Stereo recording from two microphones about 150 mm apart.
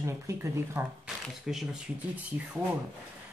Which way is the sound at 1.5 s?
5° right (ahead or behind).